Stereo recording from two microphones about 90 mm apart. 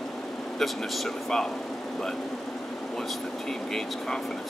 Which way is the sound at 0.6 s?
5° left (ahead or behind).